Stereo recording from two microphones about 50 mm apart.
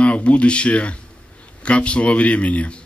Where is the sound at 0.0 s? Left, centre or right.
Left.